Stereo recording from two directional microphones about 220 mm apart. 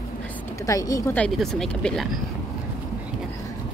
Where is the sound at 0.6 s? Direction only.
15° left (ahead or behind).